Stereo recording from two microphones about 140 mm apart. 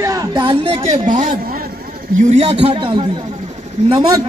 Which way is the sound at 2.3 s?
50° right (ahead or behind).